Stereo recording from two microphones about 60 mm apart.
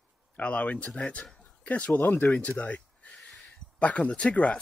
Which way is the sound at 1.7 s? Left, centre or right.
Left.